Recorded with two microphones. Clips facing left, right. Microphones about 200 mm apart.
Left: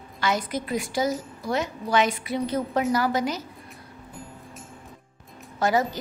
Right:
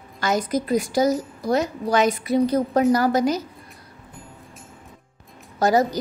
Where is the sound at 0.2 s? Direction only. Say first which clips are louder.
Right 4 dB; 45° right (ahead or behind).